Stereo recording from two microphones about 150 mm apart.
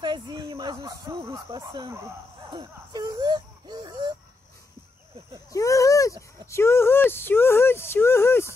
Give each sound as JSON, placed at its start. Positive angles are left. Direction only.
{"t": 0.0, "sound": "speech", "side_deg": -30}
{"t": 5.5, "sound": "speech", "side_deg": 20}